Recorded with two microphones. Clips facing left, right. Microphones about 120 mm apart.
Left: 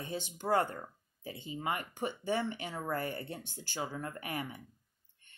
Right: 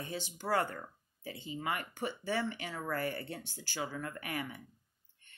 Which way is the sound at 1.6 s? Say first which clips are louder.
Left 1 dB; 30° left (ahead or behind).